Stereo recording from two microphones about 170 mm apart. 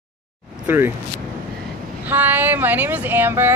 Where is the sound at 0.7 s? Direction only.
15° right (ahead or behind).